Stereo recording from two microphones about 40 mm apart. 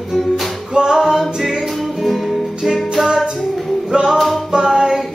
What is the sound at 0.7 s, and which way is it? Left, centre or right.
Music, centre.